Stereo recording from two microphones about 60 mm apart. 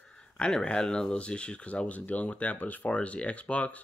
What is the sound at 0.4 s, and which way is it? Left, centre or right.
Speech, centre.